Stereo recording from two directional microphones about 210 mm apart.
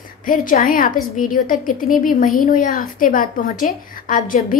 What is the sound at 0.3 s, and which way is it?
A woman's voice, 40° left (ahead or behind).